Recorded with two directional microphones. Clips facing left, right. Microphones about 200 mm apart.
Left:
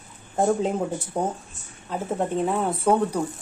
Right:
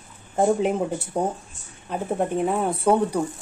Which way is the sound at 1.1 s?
15° right (ahead or behind).